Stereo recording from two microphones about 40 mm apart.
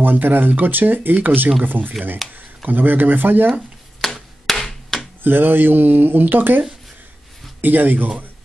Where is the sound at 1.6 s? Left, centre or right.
Right.